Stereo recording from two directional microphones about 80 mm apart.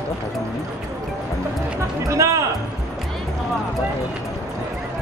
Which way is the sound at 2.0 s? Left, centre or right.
Right.